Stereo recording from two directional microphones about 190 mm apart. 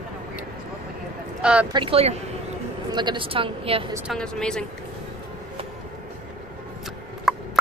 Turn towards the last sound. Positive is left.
turn(degrees=0)  # may be behind; listen again after turning